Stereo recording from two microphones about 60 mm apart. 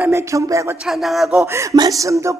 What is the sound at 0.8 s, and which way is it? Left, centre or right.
Speech, centre.